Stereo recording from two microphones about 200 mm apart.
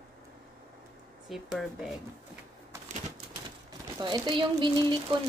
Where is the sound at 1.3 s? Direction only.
Centre (ahead or behind).